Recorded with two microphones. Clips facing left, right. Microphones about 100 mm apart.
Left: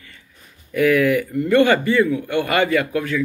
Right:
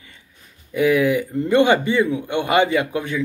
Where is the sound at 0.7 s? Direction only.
20° right (ahead or behind).